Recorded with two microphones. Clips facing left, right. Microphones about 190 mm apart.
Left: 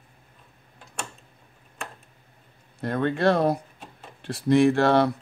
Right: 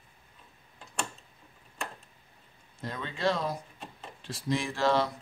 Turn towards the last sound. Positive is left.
turn(degrees=60)  # may be behind; listen again after turning